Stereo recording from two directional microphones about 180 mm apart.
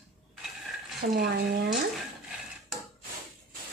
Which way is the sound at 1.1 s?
60° right (ahead or behind).